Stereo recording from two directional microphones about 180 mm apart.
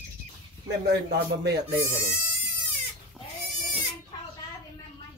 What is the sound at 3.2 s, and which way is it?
Goat, 5° right (ahead or behind).